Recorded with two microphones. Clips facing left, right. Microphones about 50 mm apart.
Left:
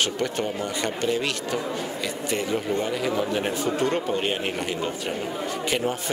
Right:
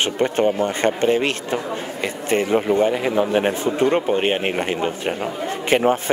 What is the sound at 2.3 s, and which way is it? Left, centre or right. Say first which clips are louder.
A man's voice: right 9 dB; right.